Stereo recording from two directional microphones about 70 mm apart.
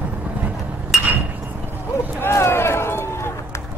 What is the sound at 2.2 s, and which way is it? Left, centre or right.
Run, left.